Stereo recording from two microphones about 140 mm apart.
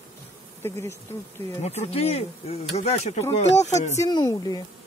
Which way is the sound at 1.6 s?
50° left (ahead or behind).